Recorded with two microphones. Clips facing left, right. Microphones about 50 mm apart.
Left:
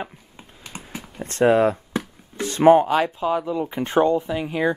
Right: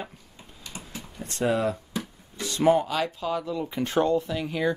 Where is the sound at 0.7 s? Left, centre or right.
Left.